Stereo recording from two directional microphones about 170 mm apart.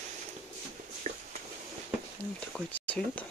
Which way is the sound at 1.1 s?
40° right (ahead or behind).